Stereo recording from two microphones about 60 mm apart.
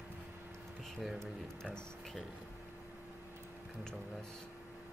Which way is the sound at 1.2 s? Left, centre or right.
Centre.